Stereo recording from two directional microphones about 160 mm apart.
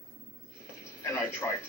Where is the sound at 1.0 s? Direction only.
20° left (ahead or behind).